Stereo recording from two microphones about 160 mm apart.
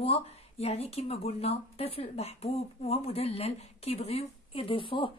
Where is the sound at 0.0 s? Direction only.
40° left (ahead or behind).